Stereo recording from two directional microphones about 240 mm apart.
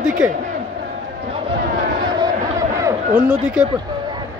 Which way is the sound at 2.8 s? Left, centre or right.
Centre.